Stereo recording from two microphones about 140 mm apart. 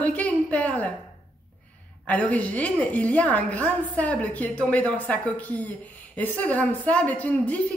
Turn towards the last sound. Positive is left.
turn(degrees=10)  # may be behind; listen again after turning